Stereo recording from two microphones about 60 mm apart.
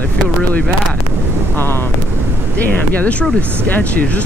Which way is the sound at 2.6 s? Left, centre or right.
Left.